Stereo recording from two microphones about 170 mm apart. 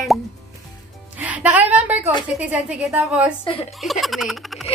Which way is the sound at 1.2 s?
10° right (ahead or behind).